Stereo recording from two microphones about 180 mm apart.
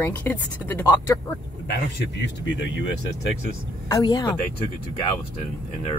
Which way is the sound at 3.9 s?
20° left (ahead or behind).